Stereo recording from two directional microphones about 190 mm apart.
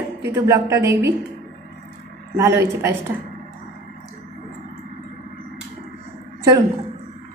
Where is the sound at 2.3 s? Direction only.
15° right (ahead or behind).